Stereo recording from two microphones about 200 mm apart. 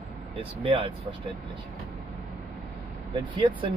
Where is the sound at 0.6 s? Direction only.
25° right (ahead or behind).